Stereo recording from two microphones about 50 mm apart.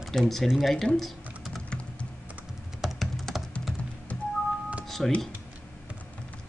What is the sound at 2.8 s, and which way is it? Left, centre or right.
Music, centre.